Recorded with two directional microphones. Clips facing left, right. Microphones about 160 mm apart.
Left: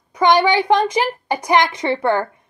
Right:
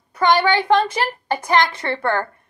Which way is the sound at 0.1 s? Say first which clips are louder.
Left 2 dB; 15° left (ahead or behind).